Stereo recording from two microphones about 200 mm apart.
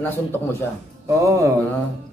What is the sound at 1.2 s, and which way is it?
Speech, 15° right (ahead or behind).